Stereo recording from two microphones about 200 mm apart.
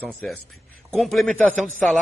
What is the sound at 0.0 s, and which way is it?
A man's voice, centre (ahead or behind).